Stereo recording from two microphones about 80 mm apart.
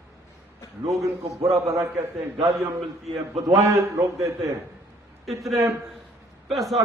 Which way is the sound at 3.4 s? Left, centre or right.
Right.